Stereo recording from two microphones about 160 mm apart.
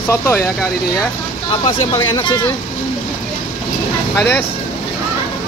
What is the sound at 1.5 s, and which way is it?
Speech, 35° left (ahead or behind).